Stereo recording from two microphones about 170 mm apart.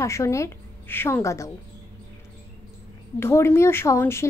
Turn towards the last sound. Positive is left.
turn(degrees=15)  # may be behind; listen again after turning